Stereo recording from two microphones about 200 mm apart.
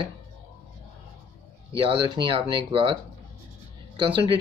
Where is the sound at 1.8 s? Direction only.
25° right (ahead or behind).